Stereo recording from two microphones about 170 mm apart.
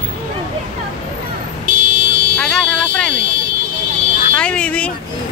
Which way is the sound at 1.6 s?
50° right (ahead or behind).